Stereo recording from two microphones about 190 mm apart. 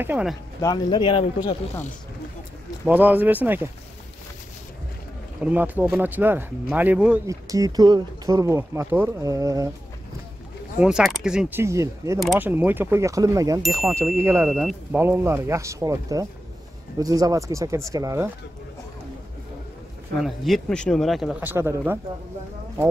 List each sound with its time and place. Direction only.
0.0 s speech: 5° right (ahead or behind)
0.8 s a man's voice: 25° left (ahead or behind)
2.8 s speech: 10° right (ahead or behind)
5.4 s speech: 10° right (ahead or behind)
7.4 s speech: 20° right (ahead or behind)
10.8 s speech: 5° right (ahead or behind)
11.6 s speech: 15° right (ahead or behind)
12.2 s speech: centre (ahead or behind)
12.4 s speech: 10° right (ahead or behind)
14.5 s speech: centre (ahead or behind)
15.0 s speech: 10° right (ahead or behind)
20.2 s speech: centre (ahead or behind)